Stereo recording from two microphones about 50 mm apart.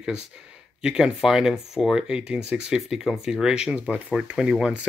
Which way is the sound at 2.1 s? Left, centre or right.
Right.